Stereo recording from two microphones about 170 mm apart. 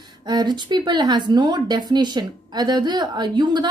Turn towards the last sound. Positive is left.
turn(degrees=-25)  # may be behind; listen again after turning